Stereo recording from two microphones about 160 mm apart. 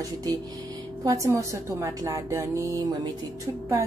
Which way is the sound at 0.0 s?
20° right (ahead or behind).